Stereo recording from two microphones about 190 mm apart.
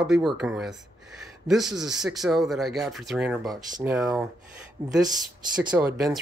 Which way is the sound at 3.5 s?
15° right (ahead or behind).